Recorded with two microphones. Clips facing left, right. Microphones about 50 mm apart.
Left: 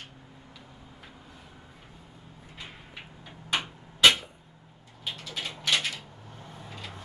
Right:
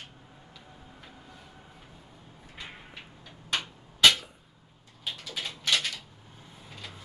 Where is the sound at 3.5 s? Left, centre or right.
Centre.